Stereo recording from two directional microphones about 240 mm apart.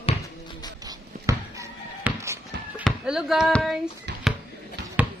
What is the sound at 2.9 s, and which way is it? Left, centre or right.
Speech, centre.